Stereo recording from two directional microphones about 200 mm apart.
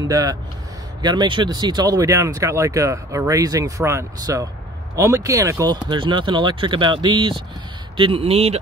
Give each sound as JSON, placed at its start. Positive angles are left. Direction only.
{"t": 0.1, "sound": "speech", "side_deg": -20}